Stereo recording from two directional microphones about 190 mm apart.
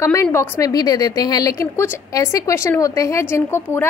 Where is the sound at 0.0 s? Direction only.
15° left (ahead or behind).